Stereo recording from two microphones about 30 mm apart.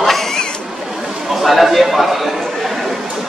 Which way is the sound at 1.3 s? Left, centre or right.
Centre.